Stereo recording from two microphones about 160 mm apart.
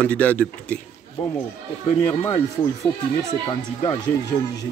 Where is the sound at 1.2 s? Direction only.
35° left (ahead or behind).